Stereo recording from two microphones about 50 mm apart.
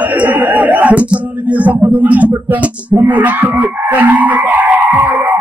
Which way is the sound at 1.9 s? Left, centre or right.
Right.